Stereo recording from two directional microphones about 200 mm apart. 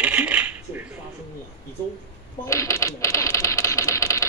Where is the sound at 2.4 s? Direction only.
15° left (ahead or behind).